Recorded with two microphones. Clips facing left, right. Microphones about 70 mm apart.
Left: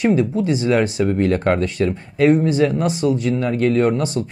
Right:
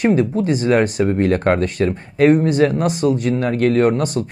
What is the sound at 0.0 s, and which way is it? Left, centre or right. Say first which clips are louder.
Speech: right 1 dB; right.